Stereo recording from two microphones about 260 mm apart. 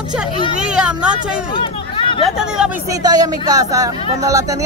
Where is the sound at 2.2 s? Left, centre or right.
Centre.